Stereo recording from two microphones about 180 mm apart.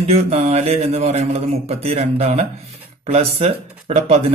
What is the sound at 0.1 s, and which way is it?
A man's voice, 35° right (ahead or behind).